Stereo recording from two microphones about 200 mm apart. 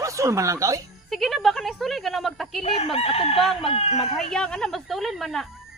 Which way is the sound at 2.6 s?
30° left (ahead or behind).